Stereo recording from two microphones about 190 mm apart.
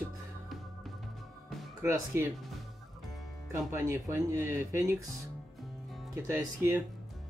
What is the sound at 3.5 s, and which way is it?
Speech, 15° right (ahead or behind).